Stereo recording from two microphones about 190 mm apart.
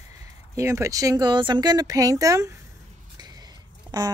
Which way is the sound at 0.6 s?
15° right (ahead or behind).